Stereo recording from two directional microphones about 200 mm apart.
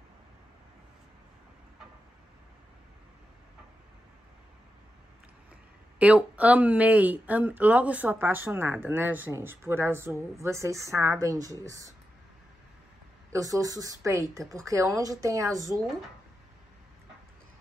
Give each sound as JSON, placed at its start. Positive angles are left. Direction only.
{"t": 5.9, "sound": "speech", "side_deg": -5}
{"t": 13.3, "sound": "speech", "side_deg": -15}